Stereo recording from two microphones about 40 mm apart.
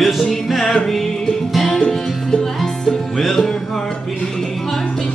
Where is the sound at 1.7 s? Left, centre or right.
Left.